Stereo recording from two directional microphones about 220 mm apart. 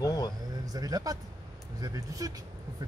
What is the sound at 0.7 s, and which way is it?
Speech, 15° right (ahead or behind).